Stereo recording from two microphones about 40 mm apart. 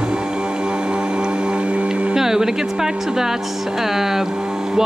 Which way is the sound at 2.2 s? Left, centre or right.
Centre.